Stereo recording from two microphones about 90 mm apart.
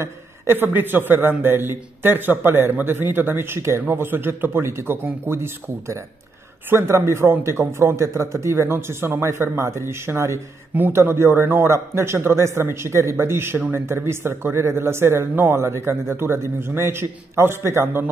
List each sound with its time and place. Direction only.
0.0 s a man's voice: 25° right (ahead or behind)
10.7 s a man's voice: 20° right (ahead or behind)